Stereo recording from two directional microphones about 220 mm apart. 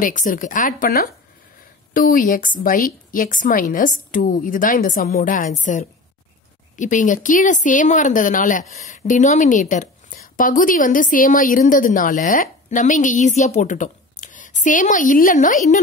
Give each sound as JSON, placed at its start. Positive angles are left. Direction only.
{"t": 0.0, "sound": "speech", "side_deg": 35}